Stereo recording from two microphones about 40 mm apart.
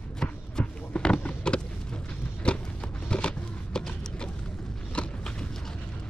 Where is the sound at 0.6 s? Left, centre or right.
Left.